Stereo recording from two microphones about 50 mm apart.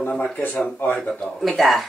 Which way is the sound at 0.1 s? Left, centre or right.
Left.